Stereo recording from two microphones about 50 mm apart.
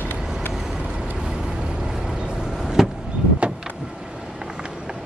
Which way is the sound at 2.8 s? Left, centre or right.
Centre.